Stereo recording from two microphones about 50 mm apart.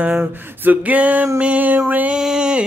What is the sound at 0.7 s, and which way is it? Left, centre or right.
Music, right.